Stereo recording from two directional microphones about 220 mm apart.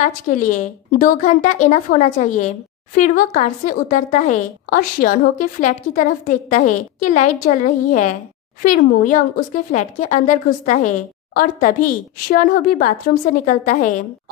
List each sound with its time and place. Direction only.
0.5 s a woman's voice: 35° left (ahead or behind)